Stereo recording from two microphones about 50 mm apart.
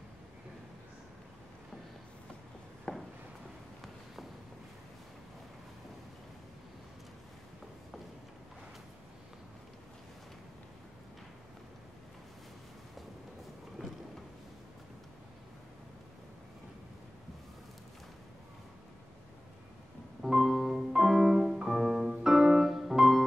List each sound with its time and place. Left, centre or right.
2.9 s a sound: centre
13.8 s vehicle: centre
20.2 s music: centre